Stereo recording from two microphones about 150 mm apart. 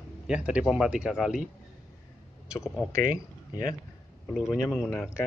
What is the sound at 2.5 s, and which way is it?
Speech, 5° right (ahead or behind).